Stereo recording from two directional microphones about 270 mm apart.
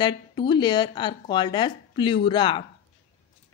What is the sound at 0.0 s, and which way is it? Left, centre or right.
Speech, centre.